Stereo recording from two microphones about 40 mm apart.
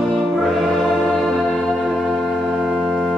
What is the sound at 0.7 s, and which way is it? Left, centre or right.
Music, centre.